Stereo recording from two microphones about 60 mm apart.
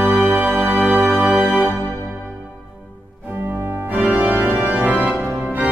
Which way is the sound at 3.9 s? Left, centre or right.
Right.